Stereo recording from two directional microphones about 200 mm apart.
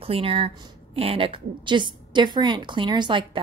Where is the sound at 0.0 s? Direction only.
30° right (ahead or behind).